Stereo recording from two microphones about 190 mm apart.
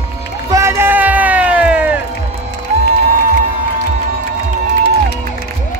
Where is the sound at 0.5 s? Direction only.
15° right (ahead or behind).